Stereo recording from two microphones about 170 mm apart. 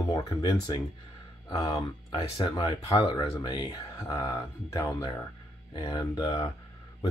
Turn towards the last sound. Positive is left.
turn(degrees=25)  # may be behind; listen again after turning